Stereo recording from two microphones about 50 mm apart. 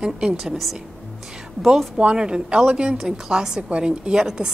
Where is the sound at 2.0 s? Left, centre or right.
Centre.